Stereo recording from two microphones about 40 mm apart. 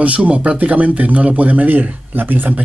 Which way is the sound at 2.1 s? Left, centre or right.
Right.